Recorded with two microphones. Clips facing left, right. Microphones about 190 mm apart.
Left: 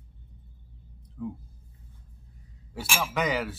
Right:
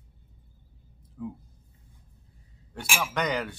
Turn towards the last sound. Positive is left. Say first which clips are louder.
# left 1 dB
turn(degrees=5)  # may be behind; listen again after turning